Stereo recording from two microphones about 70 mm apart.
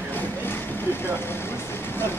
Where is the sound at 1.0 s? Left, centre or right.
Left.